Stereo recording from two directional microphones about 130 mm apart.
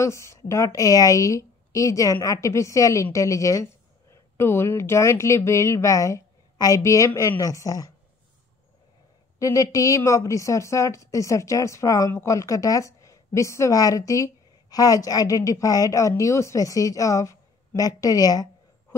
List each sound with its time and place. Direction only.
0.0 s a woman's voice: 20° left (ahead or behind)
9.4 s a woman's voice: 25° left (ahead or behind)